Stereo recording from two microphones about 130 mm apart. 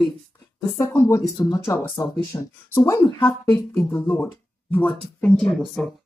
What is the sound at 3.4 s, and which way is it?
A woman's voice, 5° left (ahead or behind).